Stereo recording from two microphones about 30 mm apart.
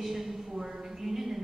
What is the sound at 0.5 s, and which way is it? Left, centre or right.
Speech, right.